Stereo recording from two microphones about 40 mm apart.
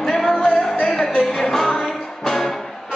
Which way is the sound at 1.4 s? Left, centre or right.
Centre.